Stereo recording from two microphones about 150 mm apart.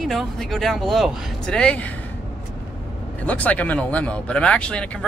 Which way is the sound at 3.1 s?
10° left (ahead or behind).